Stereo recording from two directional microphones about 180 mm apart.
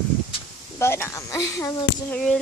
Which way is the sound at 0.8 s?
15° left (ahead or behind).